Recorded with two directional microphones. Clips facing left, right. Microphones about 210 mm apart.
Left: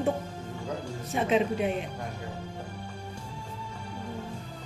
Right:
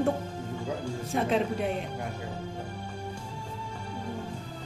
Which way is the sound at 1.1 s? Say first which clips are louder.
Left 2 dB; centre (ahead or behind).